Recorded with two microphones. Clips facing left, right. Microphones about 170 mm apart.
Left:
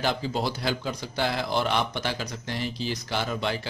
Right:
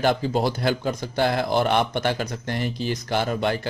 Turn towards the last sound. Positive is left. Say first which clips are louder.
# right 5 dB
turn(degrees=-50)  # may be behind; listen again after turning